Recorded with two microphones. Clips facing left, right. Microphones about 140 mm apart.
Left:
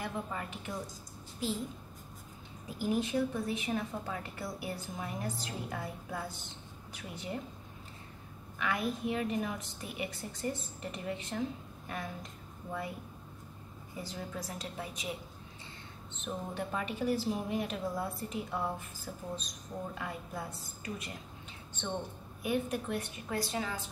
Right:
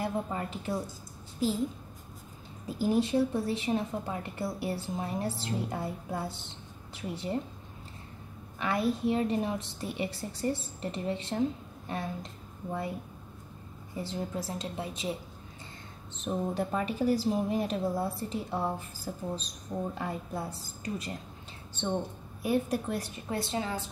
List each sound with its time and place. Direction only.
0.0 s a woman's voice: 35° right (ahead or behind)
2.8 s a woman's voice: 30° right (ahead or behind)
8.5 s a woman's voice: 30° right (ahead or behind)
13.9 s a woman's voice: 25° right (ahead or behind)
16.2 s a woman's voice: 35° right (ahead or behind)
22.4 s a woman's voice: 35° right (ahead or behind)